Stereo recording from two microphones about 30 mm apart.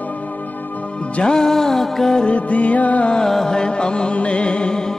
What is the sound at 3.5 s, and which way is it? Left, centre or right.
Music, left.